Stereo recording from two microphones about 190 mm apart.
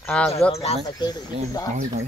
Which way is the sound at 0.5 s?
35° left (ahead or behind).